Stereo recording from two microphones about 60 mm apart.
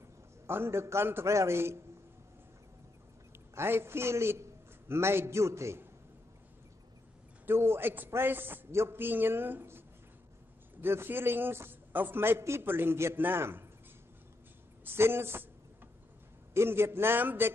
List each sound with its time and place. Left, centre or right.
0.5 s a man's voice: right
1.2 s a man's voice: right
3.5 s a man's voice: right
7.4 s a man's voice: right
14.9 s a man's voice: right
16.5 s a man's voice: right